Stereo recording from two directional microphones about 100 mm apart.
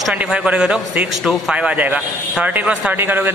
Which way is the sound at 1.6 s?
15° right (ahead or behind).